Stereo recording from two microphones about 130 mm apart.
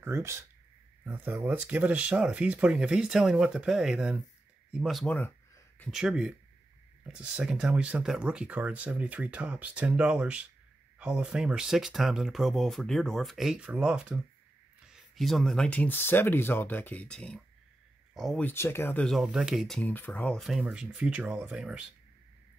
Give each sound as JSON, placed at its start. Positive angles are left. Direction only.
{"t": 0.0, "sound": "speech", "side_deg": -20}
{"t": 5.9, "sound": "speech", "side_deg": -5}
{"t": 18.4, "sound": "speech", "side_deg": 15}
{"t": 19.0, "sound": "speech", "side_deg": 0}
{"t": 19.8, "sound": "speech", "side_deg": 15}
{"t": 20.4, "sound": "speech", "side_deg": -5}